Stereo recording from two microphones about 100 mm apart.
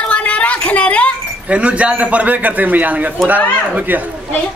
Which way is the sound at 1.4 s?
10° right (ahead or behind).